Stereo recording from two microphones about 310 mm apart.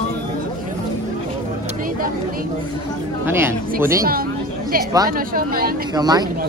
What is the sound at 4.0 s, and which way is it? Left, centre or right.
A woman's voice, right.